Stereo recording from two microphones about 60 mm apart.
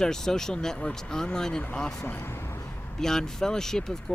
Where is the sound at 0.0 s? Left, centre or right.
Centre.